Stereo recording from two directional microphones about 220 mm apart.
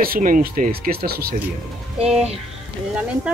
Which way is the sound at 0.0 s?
40° right (ahead or behind).